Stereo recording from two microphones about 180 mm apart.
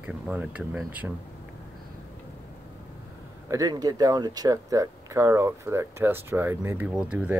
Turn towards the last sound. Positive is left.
turn(degrees=-10)  # may be behind; listen again after turning